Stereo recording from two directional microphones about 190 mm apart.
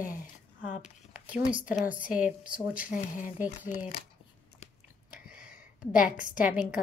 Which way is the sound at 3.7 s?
45° left (ahead or behind).